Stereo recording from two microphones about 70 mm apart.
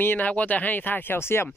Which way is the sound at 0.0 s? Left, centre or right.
Left.